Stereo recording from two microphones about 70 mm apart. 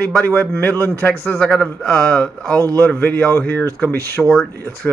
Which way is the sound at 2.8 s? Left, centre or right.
Left.